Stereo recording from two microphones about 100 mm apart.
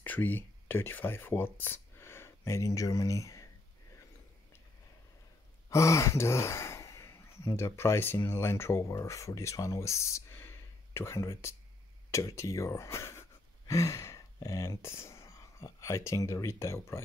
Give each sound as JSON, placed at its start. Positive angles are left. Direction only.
{"t": 0.0, "sound": "speech", "side_deg": 20}
{"t": 5.7, "sound": "speech", "side_deg": 30}